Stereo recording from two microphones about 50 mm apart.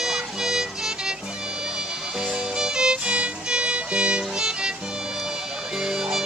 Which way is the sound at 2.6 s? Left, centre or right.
Centre.